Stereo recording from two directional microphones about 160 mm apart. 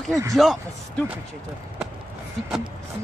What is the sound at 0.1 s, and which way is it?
Speech, 20° right (ahead or behind).